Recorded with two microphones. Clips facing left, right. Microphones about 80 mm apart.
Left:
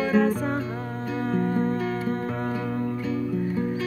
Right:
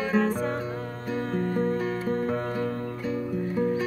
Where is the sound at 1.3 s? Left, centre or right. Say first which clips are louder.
Left 2 dB; centre.